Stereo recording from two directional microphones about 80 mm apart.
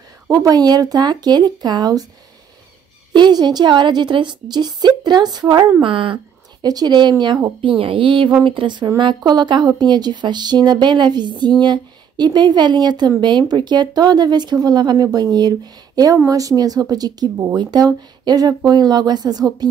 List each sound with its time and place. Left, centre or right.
0.3 s a woman's voice: right
3.2 s a woman's voice: right
5.8 s speech: right
6.6 s a woman's voice: right
7.6 s a woman's voice: right